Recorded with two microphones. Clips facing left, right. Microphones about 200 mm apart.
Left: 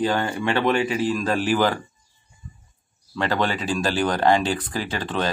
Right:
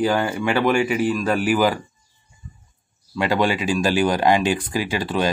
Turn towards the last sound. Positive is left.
turn(degrees=-10)  # may be behind; listen again after turning